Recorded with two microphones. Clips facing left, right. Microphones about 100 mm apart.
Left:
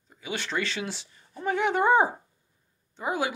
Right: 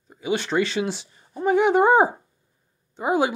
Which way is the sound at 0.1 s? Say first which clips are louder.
Right 8 dB; 20° right (ahead or behind).